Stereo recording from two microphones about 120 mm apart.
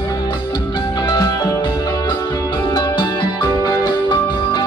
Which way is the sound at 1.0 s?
35° left (ahead or behind).